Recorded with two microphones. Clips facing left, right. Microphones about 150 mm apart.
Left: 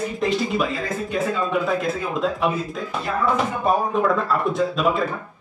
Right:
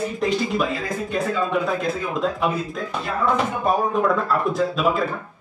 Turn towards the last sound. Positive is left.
turn(degrees=0)  # may be behind; listen again after turning